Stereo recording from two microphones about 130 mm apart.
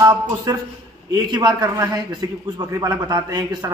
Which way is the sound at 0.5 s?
30° right (ahead or behind).